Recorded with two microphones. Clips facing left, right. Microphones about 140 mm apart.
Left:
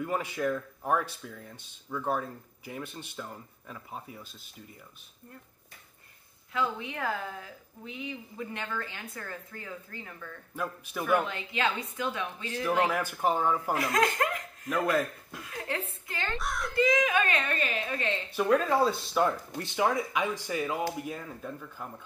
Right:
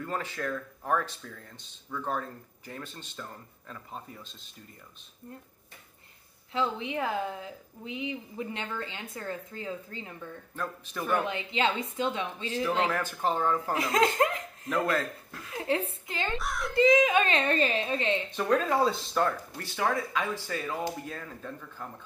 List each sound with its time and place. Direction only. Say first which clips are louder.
0.0 s speech: left 3 dB; 15° left (ahead or behind)
6.5 s a woman's voice: right 2 dB; 25° right (ahead or behind)
10.5 s speech: left 2 dB; 10° left (ahead or behind)
11.2 s a woman's voice: right 2 dB; 20° right (ahead or behind)
12.8 s speech: left 1 dB; 10° left (ahead or behind)
13.7 s chuckle: right 2 dB; 20° right (ahead or behind)
14.9 s speech: left 2 dB; 15° left (ahead or behind)
15.5 s a woman's voice: right 6 dB; 20° right (ahead or behind)
16.3 s a child's voice: right 1 dB; centre (ahead or behind)
16.7 s a woman's voice: right 4 dB; 25° right (ahead or behind)
18.3 s speech: left 3 dB; 5° left (ahead or behind)
19.2 s speech: left 2 dB; 20° left (ahead or behind)